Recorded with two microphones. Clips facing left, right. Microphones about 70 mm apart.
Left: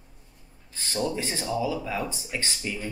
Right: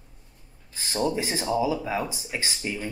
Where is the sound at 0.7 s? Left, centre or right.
Centre.